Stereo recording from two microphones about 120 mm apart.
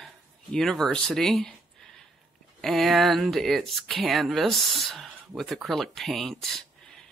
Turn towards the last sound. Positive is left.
turn(degrees=5)  # may be behind; listen again after turning